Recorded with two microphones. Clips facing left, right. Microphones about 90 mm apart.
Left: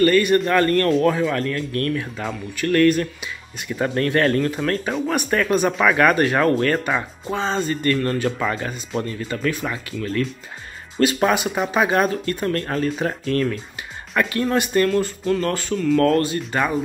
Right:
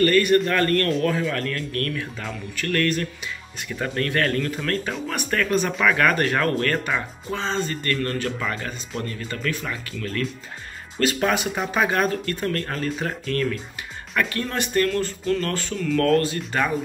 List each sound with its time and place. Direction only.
0.0 s speech: 20° left (ahead or behind)
14.3 s speech: 15° left (ahead or behind)